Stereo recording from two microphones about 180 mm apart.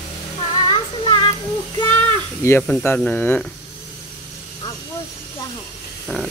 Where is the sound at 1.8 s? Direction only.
15° left (ahead or behind).